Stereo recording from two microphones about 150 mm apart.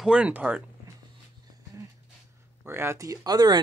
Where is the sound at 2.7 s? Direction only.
15° right (ahead or behind).